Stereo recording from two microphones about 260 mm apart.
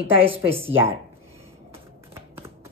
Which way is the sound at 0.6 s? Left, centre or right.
Centre.